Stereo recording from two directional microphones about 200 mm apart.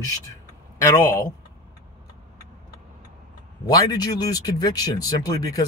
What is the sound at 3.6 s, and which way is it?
Speech, 20° left (ahead or behind).